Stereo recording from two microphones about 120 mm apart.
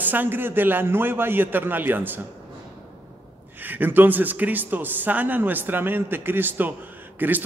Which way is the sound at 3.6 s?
15° right (ahead or behind).